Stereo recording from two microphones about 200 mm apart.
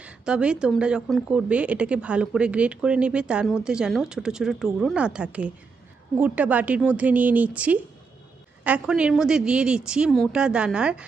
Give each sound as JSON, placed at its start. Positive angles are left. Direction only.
{"t": 0.0, "sound": "a woman's voice", "side_deg": -5}